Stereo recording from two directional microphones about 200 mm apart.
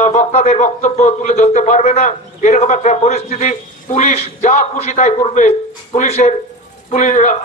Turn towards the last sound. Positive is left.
turn(degrees=35)  # may be behind; listen again after turning